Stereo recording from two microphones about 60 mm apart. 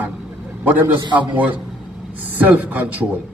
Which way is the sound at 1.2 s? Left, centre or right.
Right.